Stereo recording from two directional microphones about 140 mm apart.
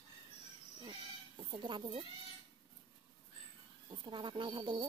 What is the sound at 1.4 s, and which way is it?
Speech, 35° right (ahead or behind).